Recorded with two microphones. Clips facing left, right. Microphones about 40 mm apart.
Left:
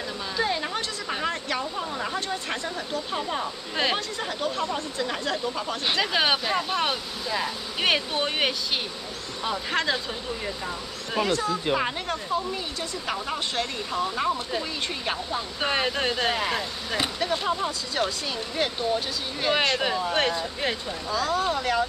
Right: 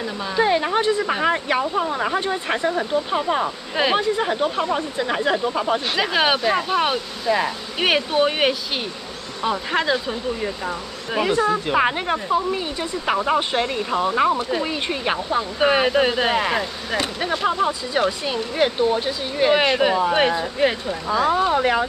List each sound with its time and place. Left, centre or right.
0.4 s speech: right
3.7 s speech: centre
5.9 s speech: centre
21.2 s speech: right